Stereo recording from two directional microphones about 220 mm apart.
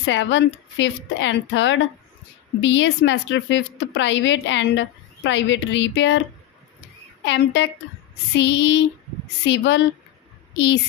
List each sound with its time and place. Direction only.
0.0 s a woman's voice: 55° left (ahead or behind)
7.2 s a sound: 55° left (ahead or behind)
9.4 s a woman's voice: 55° left (ahead or behind)